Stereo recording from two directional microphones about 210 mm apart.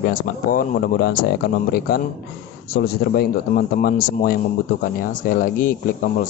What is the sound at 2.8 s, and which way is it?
Speech, 50° left (ahead or behind).